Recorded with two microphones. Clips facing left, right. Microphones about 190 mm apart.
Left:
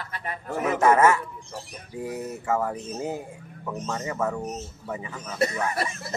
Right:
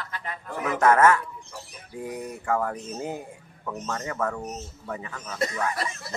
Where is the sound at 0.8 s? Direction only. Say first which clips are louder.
Right 1 dB; 10° left (ahead or behind).